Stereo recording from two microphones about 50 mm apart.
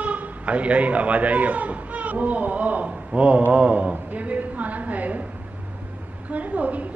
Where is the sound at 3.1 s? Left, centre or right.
Right.